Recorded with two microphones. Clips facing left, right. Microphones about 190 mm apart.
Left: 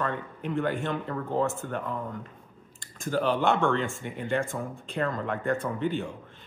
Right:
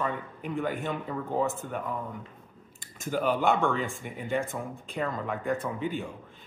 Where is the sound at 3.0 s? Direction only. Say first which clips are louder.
Left 1 dB; 10° right (ahead or behind).